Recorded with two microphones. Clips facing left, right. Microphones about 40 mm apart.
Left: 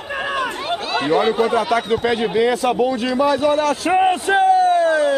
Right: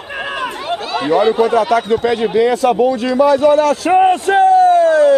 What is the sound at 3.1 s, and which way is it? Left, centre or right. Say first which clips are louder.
Speech: right 7 dB; left.